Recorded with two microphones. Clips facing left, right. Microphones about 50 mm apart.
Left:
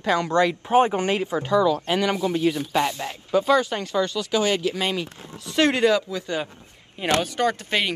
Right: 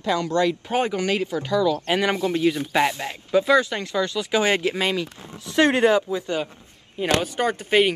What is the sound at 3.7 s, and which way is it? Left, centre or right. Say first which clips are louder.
Speech: left 1 dB; centre.